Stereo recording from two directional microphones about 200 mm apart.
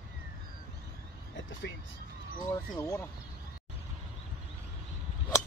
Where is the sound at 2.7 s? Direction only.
15° left (ahead or behind).